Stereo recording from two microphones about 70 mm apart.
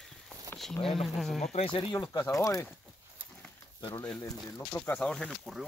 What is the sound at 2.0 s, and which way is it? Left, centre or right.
Speech, left.